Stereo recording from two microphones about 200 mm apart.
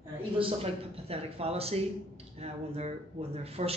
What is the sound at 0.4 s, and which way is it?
A man's voice, 30° right (ahead or behind).